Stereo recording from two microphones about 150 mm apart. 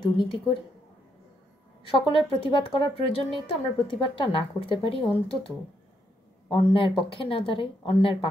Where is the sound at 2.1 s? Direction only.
35° left (ahead or behind).